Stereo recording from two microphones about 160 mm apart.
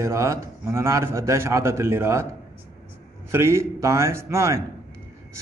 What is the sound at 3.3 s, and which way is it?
A man's voice, 15° right (ahead or behind).